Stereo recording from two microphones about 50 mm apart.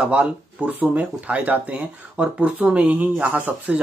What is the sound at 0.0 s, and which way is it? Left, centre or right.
Speech, right.